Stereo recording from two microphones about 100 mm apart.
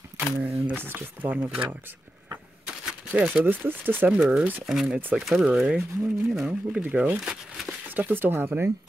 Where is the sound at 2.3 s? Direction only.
10° right (ahead or behind).